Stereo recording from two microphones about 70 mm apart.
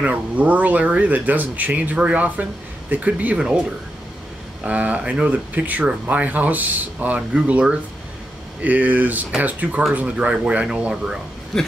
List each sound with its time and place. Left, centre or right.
0.0 s speech: right
4.6 s speech: centre